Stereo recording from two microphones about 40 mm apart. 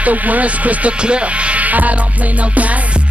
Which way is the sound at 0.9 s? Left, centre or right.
Right.